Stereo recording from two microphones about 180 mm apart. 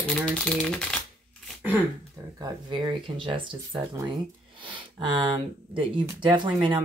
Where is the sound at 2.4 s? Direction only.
25° right (ahead or behind).